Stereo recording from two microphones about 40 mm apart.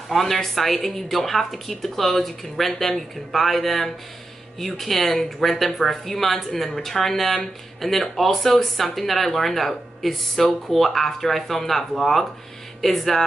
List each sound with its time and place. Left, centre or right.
0.1 s speech: centre